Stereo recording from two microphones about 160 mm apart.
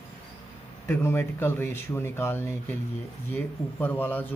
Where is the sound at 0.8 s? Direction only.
15° left (ahead or behind).